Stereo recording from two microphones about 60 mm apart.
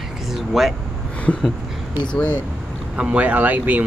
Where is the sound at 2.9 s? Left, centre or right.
Centre.